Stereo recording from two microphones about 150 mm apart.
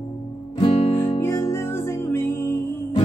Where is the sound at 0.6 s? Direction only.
40° left (ahead or behind).